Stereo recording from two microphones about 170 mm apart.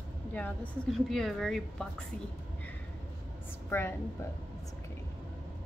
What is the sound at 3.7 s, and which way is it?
Speech, 15° left (ahead or behind).